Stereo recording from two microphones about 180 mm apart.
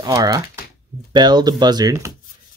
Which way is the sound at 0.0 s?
20° right (ahead or behind).